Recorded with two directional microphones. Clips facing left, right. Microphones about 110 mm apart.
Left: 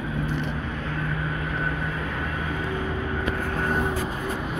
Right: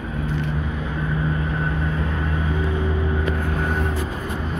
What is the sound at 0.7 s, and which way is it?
Vehicle, 15° right (ahead or behind).